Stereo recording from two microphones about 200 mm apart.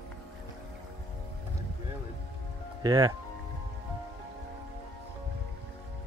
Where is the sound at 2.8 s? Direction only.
20° right (ahead or behind).